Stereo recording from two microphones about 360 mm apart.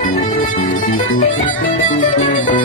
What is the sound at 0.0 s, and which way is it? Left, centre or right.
Music, centre.